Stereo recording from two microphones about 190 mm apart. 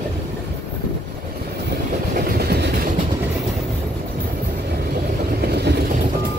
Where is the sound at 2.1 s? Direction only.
55° right (ahead or behind).